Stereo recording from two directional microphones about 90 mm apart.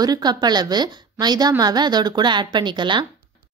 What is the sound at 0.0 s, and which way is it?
A woman's voice, 50° right (ahead or behind).